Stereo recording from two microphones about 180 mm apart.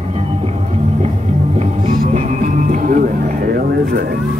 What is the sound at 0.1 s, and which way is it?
Music, 35° right (ahead or behind).